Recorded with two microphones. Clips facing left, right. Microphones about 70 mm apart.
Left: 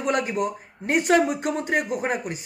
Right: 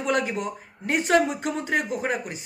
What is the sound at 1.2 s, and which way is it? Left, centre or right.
Speech, left.